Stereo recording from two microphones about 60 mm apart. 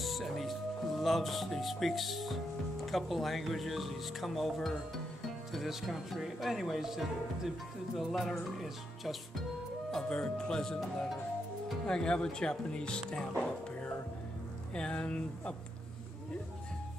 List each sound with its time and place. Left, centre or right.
0.0 s speech: centre
9.8 s speech: centre
13.4 s music: centre
14.7 s speech: centre